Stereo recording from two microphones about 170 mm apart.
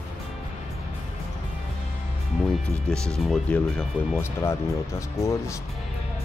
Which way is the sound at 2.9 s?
5° left (ahead or behind).